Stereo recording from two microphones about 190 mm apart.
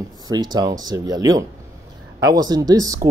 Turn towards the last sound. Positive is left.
turn(degrees=-20)  # may be behind; listen again after turning